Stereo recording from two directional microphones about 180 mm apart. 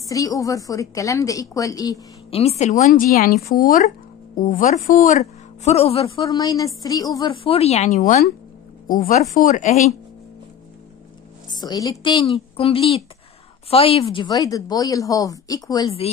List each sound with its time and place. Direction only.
0.1 s speech: 20° left (ahead or behind)
2.3 s speech: 35° left (ahead or behind)
6.2 s speech: 20° left (ahead or behind)
7.4 s speech: 35° left (ahead or behind)
11.5 s speech: 20° left (ahead or behind)